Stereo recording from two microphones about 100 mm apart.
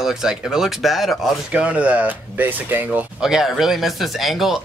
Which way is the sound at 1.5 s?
15° right (ahead or behind).